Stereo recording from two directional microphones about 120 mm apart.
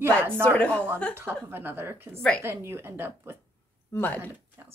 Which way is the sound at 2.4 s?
20° right (ahead or behind).